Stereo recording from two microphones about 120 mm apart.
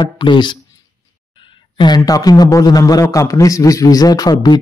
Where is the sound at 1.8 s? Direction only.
35° left (ahead or behind).